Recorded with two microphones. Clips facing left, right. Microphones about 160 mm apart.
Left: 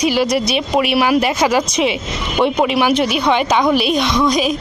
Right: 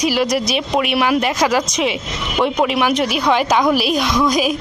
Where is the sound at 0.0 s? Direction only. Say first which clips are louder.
Left 2 dB; centre (ahead or behind).